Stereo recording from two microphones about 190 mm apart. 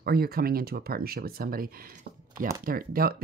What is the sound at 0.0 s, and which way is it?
Speech, 55° right (ahead or behind).